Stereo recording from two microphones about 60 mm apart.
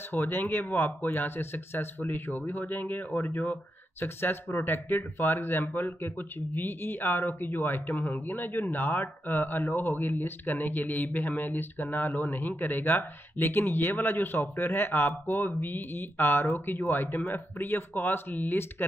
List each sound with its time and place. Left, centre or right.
0.1 s speech: left